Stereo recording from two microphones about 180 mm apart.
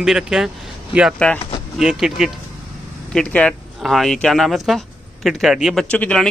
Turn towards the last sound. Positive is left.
turn(degrees=5)  # may be behind; listen again after turning